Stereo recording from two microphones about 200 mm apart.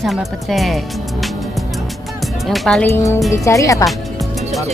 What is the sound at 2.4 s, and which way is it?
Speech, centre (ahead or behind).